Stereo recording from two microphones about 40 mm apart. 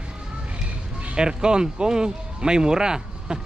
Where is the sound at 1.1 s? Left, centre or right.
Centre.